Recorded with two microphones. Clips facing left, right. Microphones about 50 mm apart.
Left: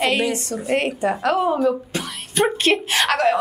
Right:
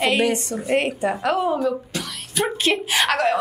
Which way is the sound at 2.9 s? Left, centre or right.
Centre.